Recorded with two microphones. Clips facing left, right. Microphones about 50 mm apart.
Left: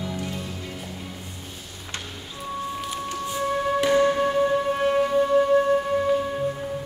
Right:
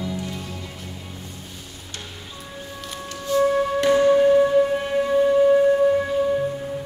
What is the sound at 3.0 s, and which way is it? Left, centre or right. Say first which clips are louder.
Music: right 11 dB; centre.